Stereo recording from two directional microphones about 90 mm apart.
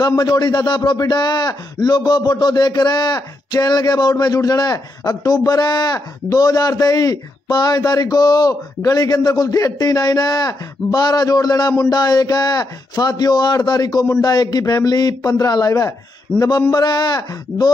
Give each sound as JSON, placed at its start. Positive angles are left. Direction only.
{"t": 0.2, "sound": "speech", "side_deg": 50}